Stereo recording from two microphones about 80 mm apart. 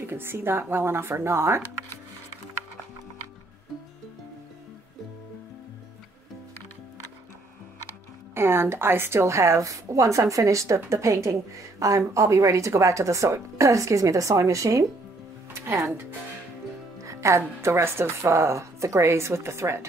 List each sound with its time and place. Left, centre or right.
0.0 s speech: right
8.4 s a woman's voice: right
15.5 s music: right
17.0 s a woman's voice: right